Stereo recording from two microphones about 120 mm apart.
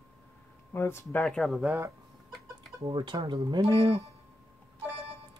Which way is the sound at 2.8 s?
40° right (ahead or behind).